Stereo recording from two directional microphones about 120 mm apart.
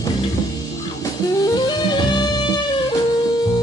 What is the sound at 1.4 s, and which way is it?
Music, 35° left (ahead or behind).